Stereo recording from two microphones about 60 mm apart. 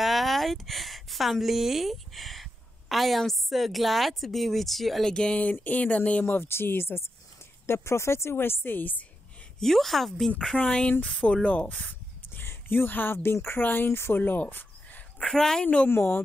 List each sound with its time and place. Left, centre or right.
0.0 s speech: centre
5.1 s speech: centre
5.4 s speech: left
6.2 s speech: left
9.6 s speech: centre
10.7 s speech: centre
12.4 s speech: left
15.1 s speech: centre
15.9 s speech: left